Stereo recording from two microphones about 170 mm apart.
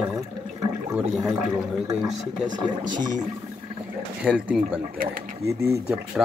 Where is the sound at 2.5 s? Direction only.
25° right (ahead or behind).